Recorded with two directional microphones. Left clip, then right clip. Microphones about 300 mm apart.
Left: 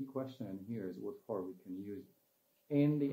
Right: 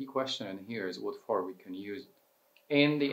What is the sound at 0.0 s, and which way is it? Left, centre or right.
Speech, centre.